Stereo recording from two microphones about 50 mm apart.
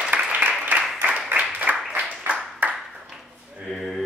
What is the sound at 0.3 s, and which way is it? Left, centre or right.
Applause, right.